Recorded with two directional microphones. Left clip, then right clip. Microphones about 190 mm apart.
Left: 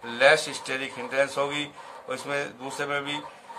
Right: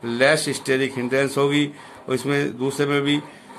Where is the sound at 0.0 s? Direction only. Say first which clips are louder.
Right 2 dB; 45° right (ahead or behind).